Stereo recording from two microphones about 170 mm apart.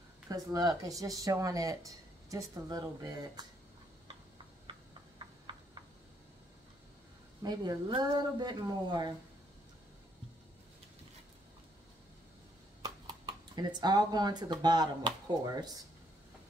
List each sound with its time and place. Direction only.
0.3 s speech: 20° right (ahead or behind)
7.4 s speech: 25° right (ahead or behind)
12.8 s speech: 25° right (ahead or behind)